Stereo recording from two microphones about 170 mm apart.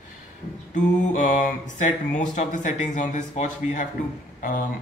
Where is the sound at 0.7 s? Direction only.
45° left (ahead or behind).